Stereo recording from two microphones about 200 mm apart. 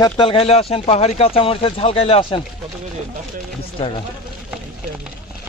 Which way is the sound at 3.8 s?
25° left (ahead or behind).